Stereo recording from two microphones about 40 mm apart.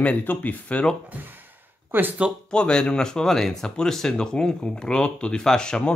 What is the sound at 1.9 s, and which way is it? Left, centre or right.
Speech, right.